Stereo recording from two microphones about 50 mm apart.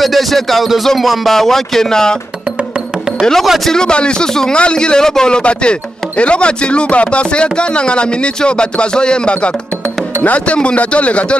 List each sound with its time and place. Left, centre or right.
0.0 s music: centre
0.8 s speech: centre
3.2 s speech: centre
3.4 s music: centre
3.7 s a man's voice: centre